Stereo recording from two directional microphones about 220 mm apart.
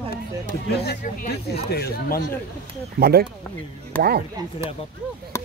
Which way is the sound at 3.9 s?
5° left (ahead or behind).